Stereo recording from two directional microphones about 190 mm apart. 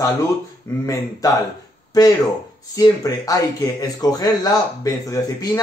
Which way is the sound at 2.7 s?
20° left (ahead or behind).